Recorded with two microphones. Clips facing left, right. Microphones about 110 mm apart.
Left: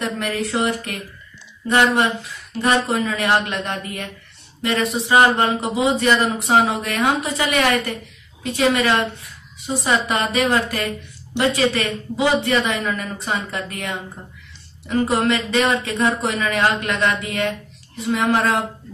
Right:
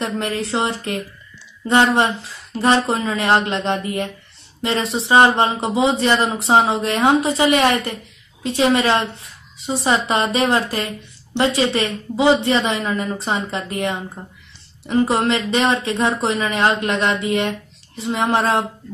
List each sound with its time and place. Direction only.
0.0 s a woman's voice: 25° right (ahead or behind)